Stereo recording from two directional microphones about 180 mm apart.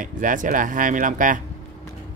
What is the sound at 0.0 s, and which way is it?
Speech, 45° right (ahead or behind).